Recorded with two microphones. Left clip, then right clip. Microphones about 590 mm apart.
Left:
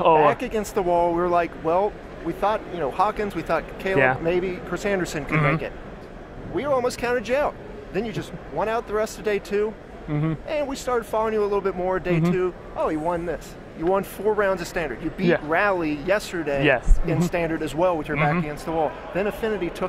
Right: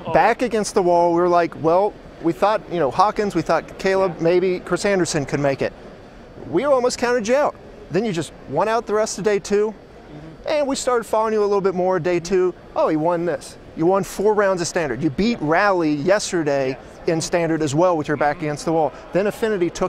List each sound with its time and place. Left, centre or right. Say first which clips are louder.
0.2 s speech: right 3 dB; right